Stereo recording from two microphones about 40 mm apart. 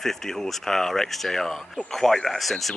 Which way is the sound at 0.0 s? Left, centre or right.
Centre.